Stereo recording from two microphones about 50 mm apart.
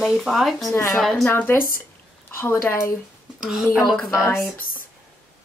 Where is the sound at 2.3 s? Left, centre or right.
Left.